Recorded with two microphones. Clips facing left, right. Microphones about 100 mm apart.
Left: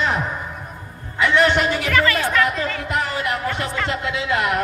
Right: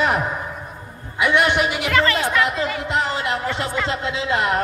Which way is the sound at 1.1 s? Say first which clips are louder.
Left 1 dB; 15° right (ahead or behind).